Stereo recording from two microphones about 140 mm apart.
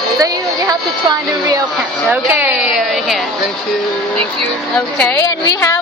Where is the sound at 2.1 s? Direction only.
15° right (ahead or behind).